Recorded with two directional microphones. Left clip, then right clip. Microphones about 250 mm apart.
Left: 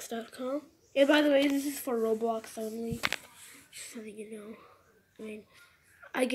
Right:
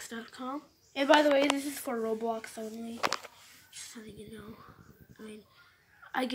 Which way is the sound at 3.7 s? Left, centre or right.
Centre.